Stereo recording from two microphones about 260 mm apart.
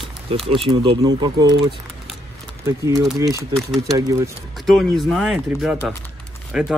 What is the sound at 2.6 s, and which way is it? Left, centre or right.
Speech, centre.